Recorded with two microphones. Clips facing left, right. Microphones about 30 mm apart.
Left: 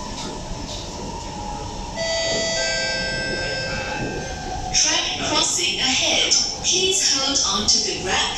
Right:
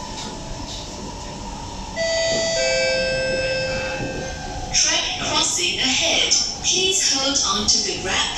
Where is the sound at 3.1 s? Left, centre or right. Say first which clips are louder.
Right 3 dB; centre.